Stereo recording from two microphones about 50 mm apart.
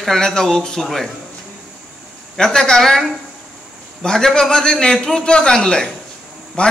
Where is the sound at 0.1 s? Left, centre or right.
Centre.